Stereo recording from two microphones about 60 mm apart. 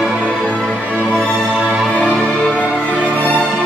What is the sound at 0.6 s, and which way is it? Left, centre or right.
Music, centre.